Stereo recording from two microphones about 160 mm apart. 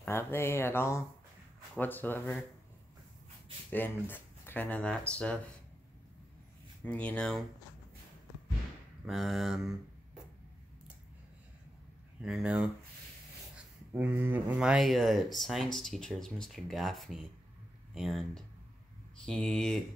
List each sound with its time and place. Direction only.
0.0 s speech: 15° left (ahead or behind)
3.7 s speech: 10° left (ahead or behind)
6.8 s speech: 10° left (ahead or behind)
9.0 s speech: centre (ahead or behind)
12.2 s speech: 5° right (ahead or behind)
13.9 s speech: 10° right (ahead or behind); by 19.8 s 5° left (ahead or behind)